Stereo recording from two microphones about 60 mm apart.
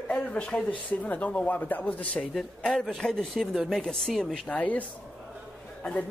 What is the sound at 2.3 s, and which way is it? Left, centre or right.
A man's voice, centre.